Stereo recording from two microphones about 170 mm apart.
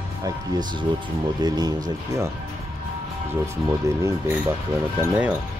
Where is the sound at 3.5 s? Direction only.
15° right (ahead or behind).